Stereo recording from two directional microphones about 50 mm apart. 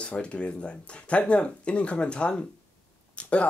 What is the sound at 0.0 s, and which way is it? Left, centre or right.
Speech, left.